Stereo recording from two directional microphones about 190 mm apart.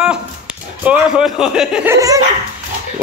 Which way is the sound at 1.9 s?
20° right (ahead or behind).